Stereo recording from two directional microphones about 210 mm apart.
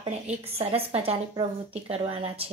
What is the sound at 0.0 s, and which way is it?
A woman's voice, 30° right (ahead or behind).